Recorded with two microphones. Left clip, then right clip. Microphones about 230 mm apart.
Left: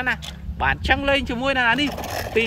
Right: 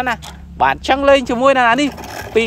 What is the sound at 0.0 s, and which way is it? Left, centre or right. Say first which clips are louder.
Speech: right 4 dB; right.